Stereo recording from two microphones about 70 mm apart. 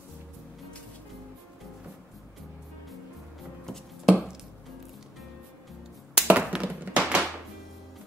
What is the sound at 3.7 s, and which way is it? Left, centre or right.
Chopping, centre.